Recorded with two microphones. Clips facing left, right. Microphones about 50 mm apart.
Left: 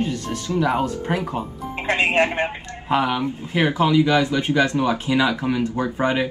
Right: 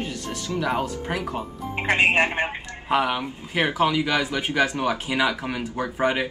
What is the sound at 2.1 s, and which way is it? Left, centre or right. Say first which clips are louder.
Speech: left 2 dB; right.